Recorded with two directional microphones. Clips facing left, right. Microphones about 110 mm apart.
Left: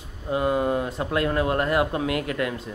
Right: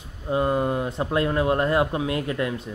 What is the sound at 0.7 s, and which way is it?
Speech, 25° right (ahead or behind).